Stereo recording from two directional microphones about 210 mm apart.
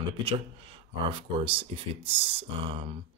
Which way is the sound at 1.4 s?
25° right (ahead or behind).